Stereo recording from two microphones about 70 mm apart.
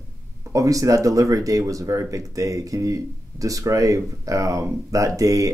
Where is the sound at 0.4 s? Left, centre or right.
Right.